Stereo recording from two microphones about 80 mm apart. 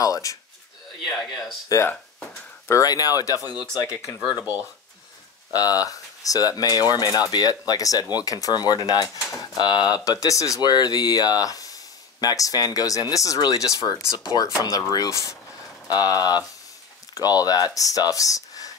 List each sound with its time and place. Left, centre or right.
0.0 s a sound: left
1.0 s speech: centre
1.7 s speech: left
4.2 s speech: left
5.5 s speech: left
10.6 s speech: left